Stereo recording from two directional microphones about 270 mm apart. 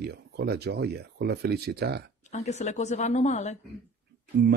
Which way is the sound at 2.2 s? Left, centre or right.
Left.